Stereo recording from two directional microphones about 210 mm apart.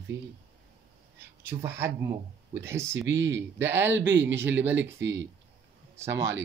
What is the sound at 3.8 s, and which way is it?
Speech, 60° right (ahead or behind).